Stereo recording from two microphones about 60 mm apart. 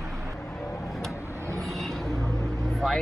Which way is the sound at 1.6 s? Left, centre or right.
Centre.